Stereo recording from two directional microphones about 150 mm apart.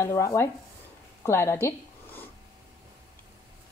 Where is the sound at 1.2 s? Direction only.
15° left (ahead or behind).